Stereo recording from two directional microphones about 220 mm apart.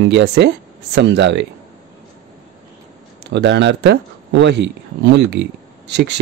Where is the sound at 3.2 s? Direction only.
50° right (ahead or behind).